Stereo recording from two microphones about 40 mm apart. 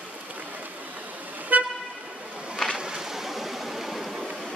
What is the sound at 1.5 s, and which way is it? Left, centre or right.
Vehicle, right.